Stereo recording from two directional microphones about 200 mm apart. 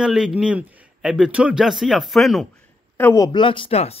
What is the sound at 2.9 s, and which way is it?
Speech, 15° left (ahead or behind).